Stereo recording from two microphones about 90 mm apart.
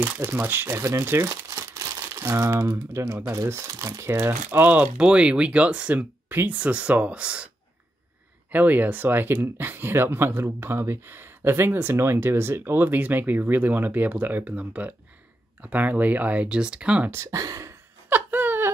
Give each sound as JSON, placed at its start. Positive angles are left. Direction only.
{"t": 0.0, "sound": "speech", "side_deg": -25}
{"t": 8.5, "sound": "speech", "side_deg": -20}
{"t": 17.1, "sound": "speech", "side_deg": -35}
{"t": 18.1, "sound": "wail", "side_deg": -20}